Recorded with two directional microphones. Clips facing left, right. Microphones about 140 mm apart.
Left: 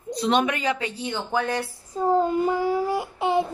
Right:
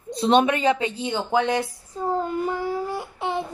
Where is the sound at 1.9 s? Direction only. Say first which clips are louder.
Left 4 dB; 15° left (ahead or behind).